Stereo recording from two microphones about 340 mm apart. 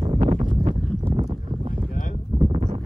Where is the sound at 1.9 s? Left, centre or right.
Left.